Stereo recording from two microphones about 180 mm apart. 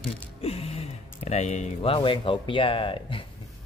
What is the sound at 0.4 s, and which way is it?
Speech, 35° left (ahead or behind).